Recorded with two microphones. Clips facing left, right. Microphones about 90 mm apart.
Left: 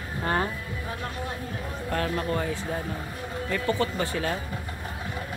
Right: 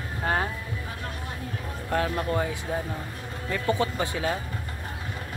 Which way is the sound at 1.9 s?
15° right (ahead or behind).